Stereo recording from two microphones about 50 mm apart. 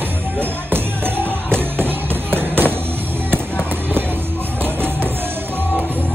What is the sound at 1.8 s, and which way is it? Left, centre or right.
Music, right.